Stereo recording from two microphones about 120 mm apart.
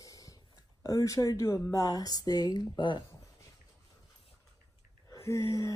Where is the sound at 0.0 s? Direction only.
30° left (ahead or behind).